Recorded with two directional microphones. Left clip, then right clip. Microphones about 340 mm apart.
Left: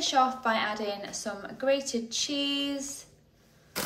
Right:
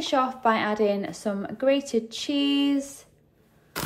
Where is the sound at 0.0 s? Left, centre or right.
Centre.